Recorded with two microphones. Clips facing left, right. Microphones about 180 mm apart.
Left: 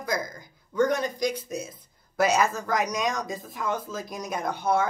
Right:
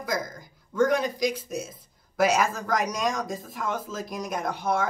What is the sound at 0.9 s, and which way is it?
Speech, 90° right.